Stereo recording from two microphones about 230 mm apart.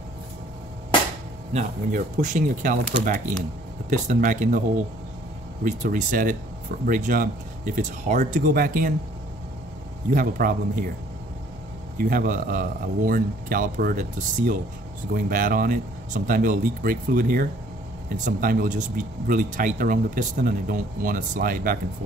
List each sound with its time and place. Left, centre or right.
1.5 s speech: right
5.6 s speech: right
10.1 s speech: right
12.0 s speech: right